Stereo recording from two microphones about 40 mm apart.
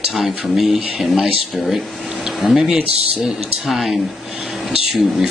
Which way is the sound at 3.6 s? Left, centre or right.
Centre.